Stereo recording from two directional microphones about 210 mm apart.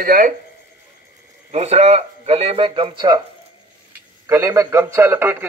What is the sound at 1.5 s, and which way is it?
Speech, 30° right (ahead or behind).